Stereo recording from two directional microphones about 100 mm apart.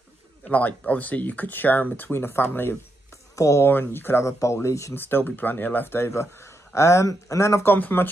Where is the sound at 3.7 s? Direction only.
20° left (ahead or behind).